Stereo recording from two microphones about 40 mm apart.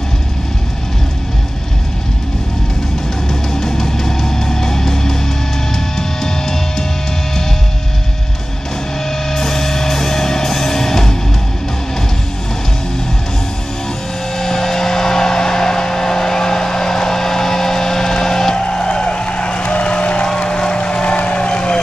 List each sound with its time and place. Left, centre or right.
3.5 s music: centre
9.3 s music: centre
14.4 s vehicle: centre
18.5 s vehicle: left
20.3 s boat: left
21.2 s vehicle: left